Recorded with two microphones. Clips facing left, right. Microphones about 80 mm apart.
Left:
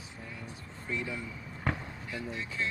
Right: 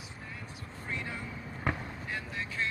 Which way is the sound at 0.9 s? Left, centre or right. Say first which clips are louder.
Left 3 dB; right.